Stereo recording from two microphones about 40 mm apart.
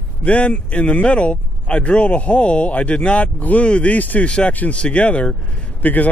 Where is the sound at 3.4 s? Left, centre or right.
Left.